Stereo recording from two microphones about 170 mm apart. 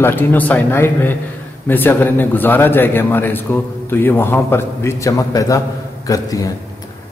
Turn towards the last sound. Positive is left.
turn(degrees=20)  # may be behind; listen again after turning